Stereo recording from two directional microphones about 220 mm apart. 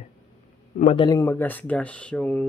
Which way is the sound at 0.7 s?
30° left (ahead or behind).